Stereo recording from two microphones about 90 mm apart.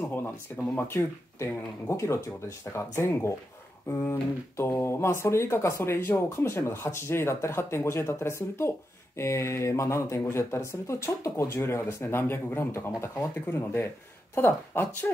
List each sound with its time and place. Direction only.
0.7 s speech: 30° left (ahead or behind)